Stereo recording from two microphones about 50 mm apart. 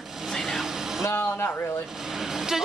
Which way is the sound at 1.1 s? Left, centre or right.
Left.